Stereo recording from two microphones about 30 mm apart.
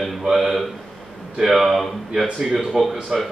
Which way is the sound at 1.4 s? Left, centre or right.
Centre.